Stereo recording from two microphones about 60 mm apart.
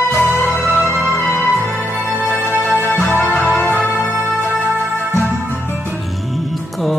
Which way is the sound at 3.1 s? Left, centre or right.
Left.